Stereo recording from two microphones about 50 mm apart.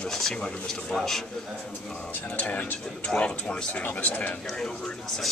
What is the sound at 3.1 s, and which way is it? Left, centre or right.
Speech, left.